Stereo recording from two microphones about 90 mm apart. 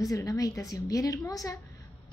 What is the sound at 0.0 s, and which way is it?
A woman's voice, 40° left (ahead or behind).